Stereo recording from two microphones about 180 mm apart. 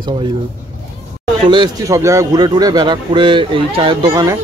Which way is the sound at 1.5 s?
20° right (ahead or behind).